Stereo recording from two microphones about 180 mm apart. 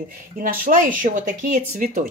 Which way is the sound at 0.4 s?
50° right (ahead or behind).